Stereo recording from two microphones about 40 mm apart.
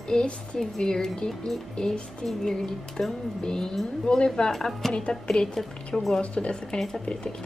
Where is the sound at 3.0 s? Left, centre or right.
Centre.